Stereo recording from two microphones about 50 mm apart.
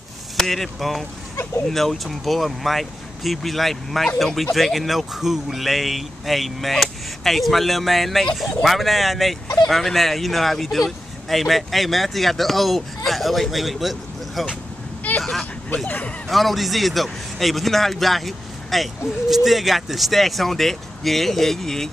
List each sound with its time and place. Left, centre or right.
0.4 s speech: centre
15.1 s vehicle: left
16.3 s speech: centre